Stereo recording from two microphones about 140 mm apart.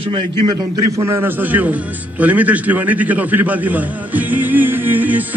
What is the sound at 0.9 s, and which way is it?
A man's voice, 15° right (ahead or behind).